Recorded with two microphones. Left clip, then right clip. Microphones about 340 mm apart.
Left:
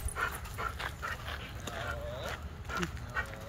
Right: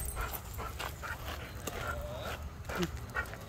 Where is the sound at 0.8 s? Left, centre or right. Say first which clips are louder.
Left 2 dB; right.